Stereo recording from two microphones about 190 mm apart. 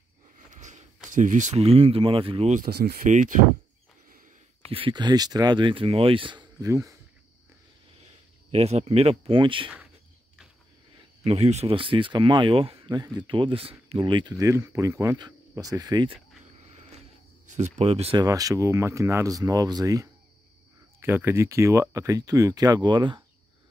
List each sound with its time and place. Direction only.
0.6 s speech: 40° right (ahead or behind)
2.6 s speech: 50° right (ahead or behind)
4.7 s speech: 25° right (ahead or behind)
8.5 s speech: 35° right (ahead or behind)
11.2 s speech: 35° right (ahead or behind)
17.5 s speech: 35° right (ahead or behind)
18.2 s speech: 20° right (ahead or behind)